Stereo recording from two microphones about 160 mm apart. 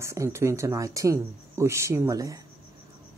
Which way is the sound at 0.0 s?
15° right (ahead or behind).